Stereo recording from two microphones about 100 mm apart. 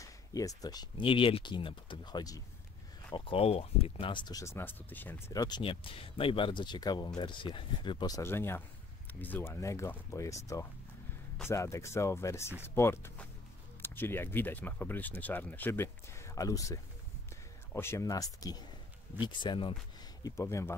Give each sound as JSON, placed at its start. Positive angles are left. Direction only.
{"t": 0.0, "sound": "speech", "side_deg": 35}
{"t": 1.0, "sound": "speech", "side_deg": 65}
{"t": 3.1, "sound": "speech", "side_deg": 55}
{"t": 3.3, "sound": "speech", "side_deg": 80}
{"t": 4.1, "sound": "speech", "side_deg": 50}
{"t": 4.4, "sound": "speech", "side_deg": 25}
{"t": 5.3, "sound": "speech", "side_deg": 40}
{"t": 5.6, "sound": "speech", "side_deg": 65}
{"t": 8.1, "sound": "speech", "side_deg": 25}
{"t": 19.2, "sound": "speech", "side_deg": 50}
{"t": 20.2, "sound": "speech", "side_deg": 30}